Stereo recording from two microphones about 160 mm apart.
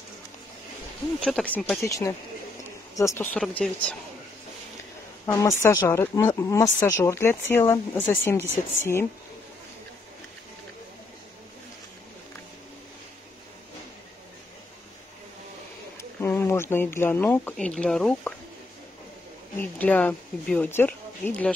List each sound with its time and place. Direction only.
1.2 s speech: 5° left (ahead or behind)
1.9 s speech: 20° left (ahead or behind)
3.3 s speech: 5° left (ahead or behind)
5.2 s speech: 20° left (ahead or behind)
16.0 s speech: 15° left (ahead or behind)
19.6 s speech: 10° left (ahead or behind)